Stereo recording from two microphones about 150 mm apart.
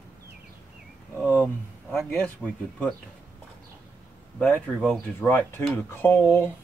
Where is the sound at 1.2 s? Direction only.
10° right (ahead or behind).